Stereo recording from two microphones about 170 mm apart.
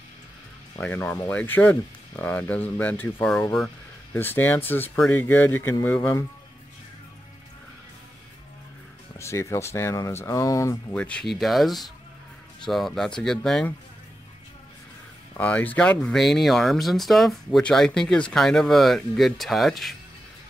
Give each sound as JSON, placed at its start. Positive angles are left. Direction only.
{"t": 0.7, "sound": "speech", "side_deg": 10}
{"t": 9.2, "sound": "speech", "side_deg": 15}
{"t": 15.3, "sound": "speech", "side_deg": 10}